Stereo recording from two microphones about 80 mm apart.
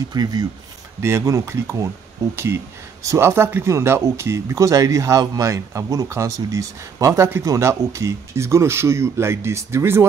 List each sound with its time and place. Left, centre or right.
0.1 s speech: right
1.0 s a man's voice: right